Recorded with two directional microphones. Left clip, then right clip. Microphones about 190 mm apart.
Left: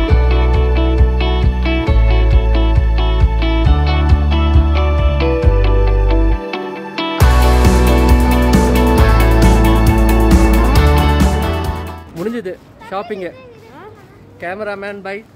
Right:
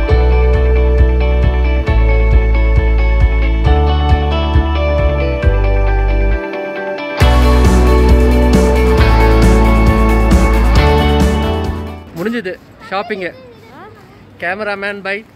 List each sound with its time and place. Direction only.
0.0 s music: centre (ahead or behind)
12.2 s a sound: 5° left (ahead or behind)
14.4 s speech: centre (ahead or behind)